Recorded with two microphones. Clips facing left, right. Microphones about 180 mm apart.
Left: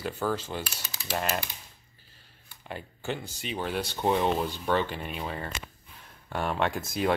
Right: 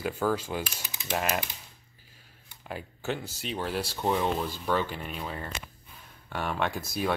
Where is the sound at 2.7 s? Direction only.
Centre (ahead or behind).